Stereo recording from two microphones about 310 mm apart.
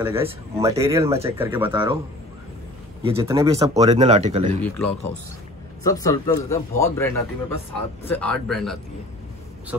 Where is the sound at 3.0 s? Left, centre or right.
Centre.